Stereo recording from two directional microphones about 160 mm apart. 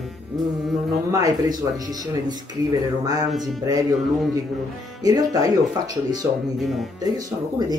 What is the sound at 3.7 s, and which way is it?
Speech, 25° right (ahead or behind).